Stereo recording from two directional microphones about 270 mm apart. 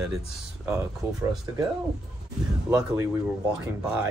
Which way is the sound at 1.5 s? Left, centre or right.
Centre.